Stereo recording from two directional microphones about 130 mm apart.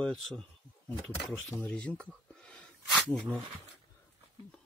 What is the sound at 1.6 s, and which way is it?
Speech, 10° left (ahead or behind).